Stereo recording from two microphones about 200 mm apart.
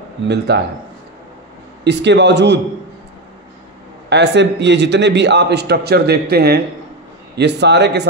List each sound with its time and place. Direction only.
0.5 s a man's voice: 55° right (ahead or behind)
1.9 s a man's voice: 60° right (ahead or behind)
4.1 s a man's voice: 60° right (ahead or behind)